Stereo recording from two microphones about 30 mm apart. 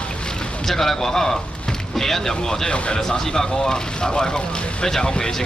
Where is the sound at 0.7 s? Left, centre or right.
Centre.